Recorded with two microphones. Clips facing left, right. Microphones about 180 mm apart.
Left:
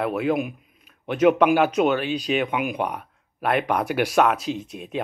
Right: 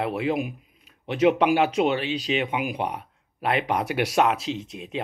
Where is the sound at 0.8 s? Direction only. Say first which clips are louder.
Left 2 dB; 50° left (ahead or behind).